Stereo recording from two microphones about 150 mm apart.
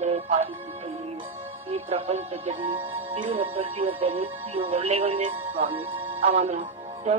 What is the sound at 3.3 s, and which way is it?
Speech, 40° right (ahead or behind).